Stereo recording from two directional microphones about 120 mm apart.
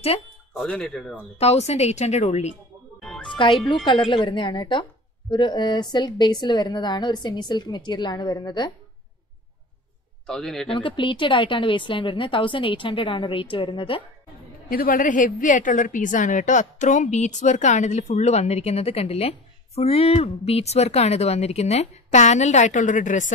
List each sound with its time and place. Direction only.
0.6 s speech: 10° left (ahead or behind)
1.4 s a woman's voice: 60° left (ahead or behind)
3.0 s music: centre (ahead or behind)
3.3 s a woman's voice: 45° left (ahead or behind)
10.2 s speech: 5° left (ahead or behind)
10.7 s a woman's voice: 45° left (ahead or behind)
15.0 s a woman's voice: 90° left